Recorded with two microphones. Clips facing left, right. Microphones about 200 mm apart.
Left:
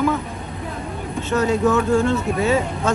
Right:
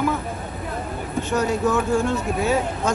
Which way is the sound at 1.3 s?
Centre (ahead or behind).